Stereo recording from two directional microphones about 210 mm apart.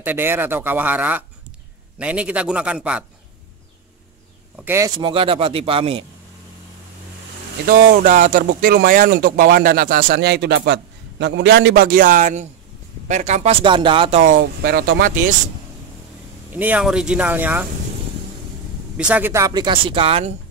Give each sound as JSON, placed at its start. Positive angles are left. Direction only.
{"t": 0.0, "sound": "a man's voice", "side_deg": -10}
{"t": 4.6, "sound": "speech", "side_deg": -15}
{"t": 7.6, "sound": "speech", "side_deg": -40}
{"t": 16.5, "sound": "speech", "side_deg": -5}
{"t": 18.9, "sound": "speech", "side_deg": -5}